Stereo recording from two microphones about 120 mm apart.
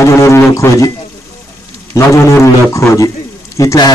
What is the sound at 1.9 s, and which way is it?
Speech, 25° left (ahead or behind).